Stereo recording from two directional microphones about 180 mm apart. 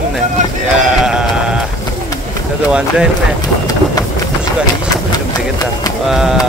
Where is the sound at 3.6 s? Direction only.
20° left (ahead or behind).